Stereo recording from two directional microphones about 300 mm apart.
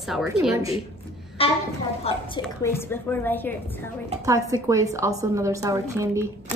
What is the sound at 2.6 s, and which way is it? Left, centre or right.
Speech, centre.